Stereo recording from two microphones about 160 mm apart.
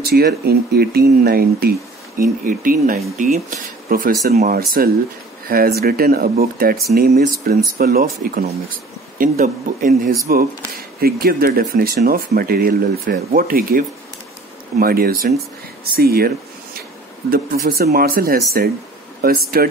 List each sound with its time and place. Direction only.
0.0 s speech: 75° right (ahead or behind)
17.3 s speech: 65° right (ahead or behind)